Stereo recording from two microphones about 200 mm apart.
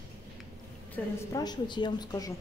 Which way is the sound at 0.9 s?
20° left (ahead or behind).